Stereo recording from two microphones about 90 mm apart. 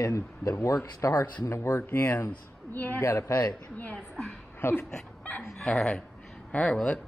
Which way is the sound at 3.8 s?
10° left (ahead or behind).